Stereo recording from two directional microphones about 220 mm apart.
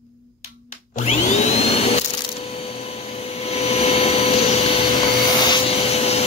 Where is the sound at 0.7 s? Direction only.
30° left (ahead or behind).